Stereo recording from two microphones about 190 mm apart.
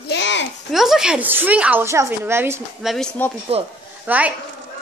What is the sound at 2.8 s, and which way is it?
Speech, centre (ahead or behind).